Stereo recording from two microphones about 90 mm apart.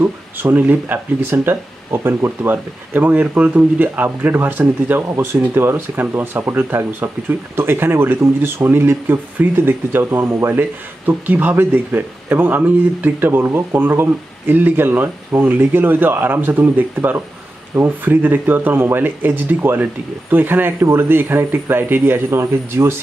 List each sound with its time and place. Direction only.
0.0 s speech: 20° right (ahead or behind)